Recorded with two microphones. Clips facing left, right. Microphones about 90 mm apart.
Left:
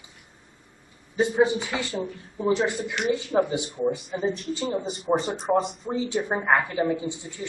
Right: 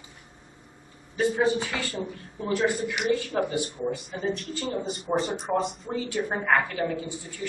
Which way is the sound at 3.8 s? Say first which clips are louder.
Left 4 dB; centre (ahead or behind).